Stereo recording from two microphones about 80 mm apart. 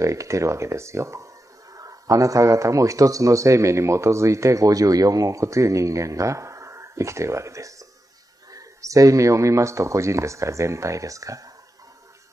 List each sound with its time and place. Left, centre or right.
0.0 s speech: right